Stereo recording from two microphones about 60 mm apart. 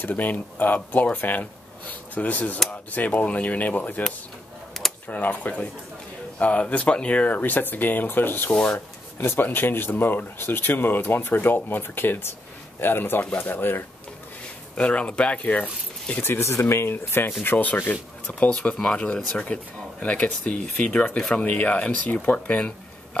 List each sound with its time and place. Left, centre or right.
0.0 s speech: left
5.0 s speech: left
14.8 s speech: left
16.2 s speech: left